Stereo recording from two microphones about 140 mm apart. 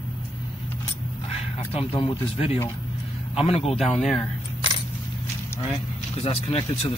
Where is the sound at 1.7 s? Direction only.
45° left (ahead or behind).